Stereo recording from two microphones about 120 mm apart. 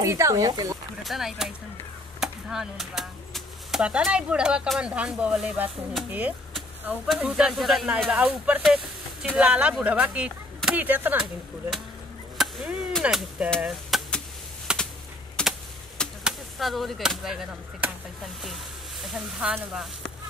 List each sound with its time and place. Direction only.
0.0 s speech: 25° right (ahead or behind)
1.0 s speech: centre (ahead or behind)
8.6 s a sound: 10° right (ahead or behind)
9.4 s speech: 10° right (ahead or behind)
13.0 s speech: 10° right (ahead or behind)
13.6 s a sound: centre (ahead or behind)
15.4 s typing: 5° left (ahead or behind)
16.3 s speech: centre (ahead or behind)